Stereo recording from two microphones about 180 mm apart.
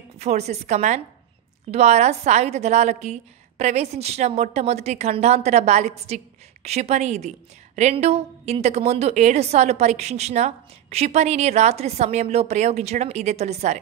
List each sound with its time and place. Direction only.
0.2 s a woman's voice: 35° right (ahead or behind)